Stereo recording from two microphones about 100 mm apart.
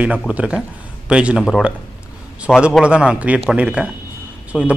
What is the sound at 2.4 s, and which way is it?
Speech, 10° right (ahead or behind).